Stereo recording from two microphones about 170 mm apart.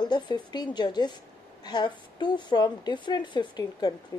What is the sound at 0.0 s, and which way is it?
A woman's voice, 25° left (ahead or behind).